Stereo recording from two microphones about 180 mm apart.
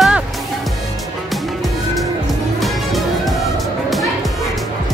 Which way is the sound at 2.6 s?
Centre (ahead or behind).